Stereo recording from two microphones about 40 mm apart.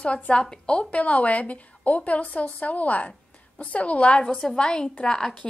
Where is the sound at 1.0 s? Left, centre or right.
Left; by 5.3 s centre.